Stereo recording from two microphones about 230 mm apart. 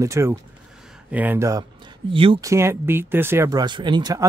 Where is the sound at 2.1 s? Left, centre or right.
Right.